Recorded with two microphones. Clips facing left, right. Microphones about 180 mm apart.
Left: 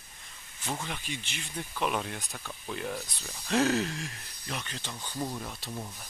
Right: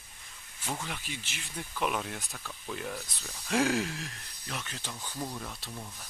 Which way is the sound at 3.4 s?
10° right (ahead or behind).